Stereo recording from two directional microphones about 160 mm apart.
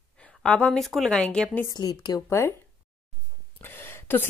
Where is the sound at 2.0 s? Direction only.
20° left (ahead or behind).